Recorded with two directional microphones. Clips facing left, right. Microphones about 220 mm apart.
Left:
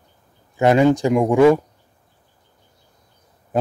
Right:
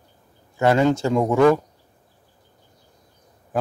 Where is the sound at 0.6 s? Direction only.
15° left (ahead or behind).